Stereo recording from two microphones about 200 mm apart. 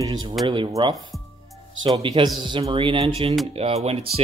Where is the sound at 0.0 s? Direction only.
20° right (ahead or behind).